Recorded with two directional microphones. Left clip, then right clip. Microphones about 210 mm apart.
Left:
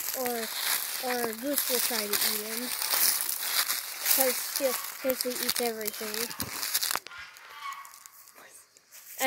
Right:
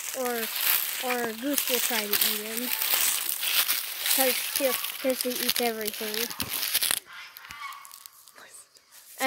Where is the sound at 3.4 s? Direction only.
15° right (ahead or behind).